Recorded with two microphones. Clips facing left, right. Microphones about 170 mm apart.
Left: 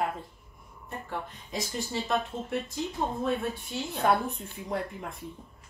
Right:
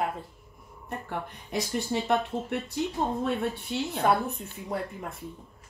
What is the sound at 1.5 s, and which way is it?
Speech, 65° right (ahead or behind).